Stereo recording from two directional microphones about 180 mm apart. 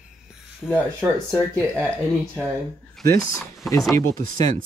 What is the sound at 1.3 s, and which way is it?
Speech, 5° left (ahead or behind).